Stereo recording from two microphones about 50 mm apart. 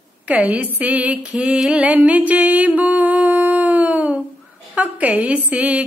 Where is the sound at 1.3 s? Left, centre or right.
Centre.